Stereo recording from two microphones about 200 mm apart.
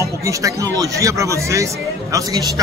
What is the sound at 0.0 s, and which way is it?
Speech, 15° right (ahead or behind).